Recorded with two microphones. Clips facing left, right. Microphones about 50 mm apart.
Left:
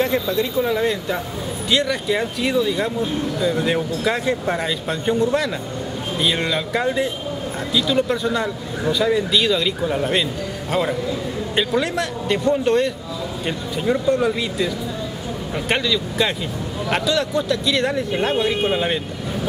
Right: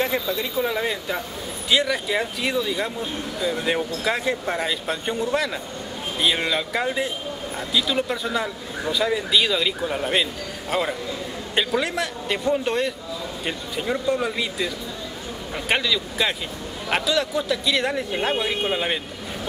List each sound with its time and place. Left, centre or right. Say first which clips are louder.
0.0 s speech: left 4 dB; centre